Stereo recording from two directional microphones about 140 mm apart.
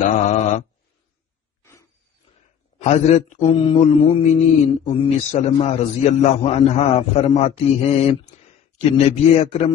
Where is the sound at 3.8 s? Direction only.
45° left (ahead or behind).